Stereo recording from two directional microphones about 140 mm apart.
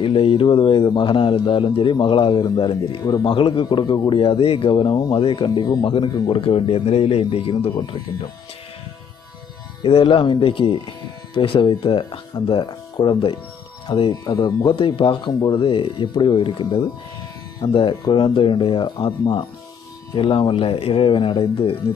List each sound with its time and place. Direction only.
0.0 s speech: 40° left (ahead or behind)
9.8 s speech: 40° left (ahead or behind)